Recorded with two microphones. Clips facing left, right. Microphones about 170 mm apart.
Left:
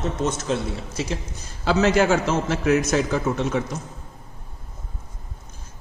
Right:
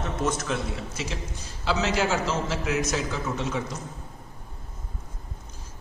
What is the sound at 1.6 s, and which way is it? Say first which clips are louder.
A man's voice: left 7 dB; 55° left (ahead or behind).